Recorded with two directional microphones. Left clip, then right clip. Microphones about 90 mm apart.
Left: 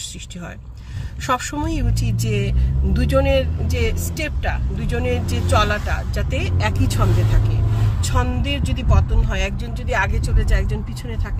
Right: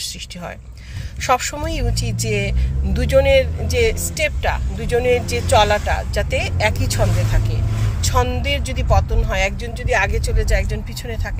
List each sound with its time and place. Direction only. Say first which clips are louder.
1.2 s speech: right 3 dB; 45° left (ahead or behind)
8.0 s speech: right 5 dB; 40° left (ahead or behind)